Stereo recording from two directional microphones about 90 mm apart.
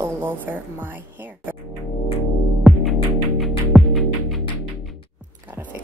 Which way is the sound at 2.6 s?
Centre (ahead or behind).